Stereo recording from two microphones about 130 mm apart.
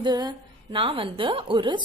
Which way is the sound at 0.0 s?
35° right (ahead or behind).